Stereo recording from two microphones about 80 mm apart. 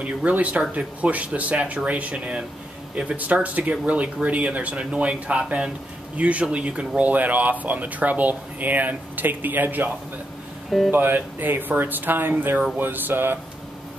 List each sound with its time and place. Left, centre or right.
0.0 s speech: centre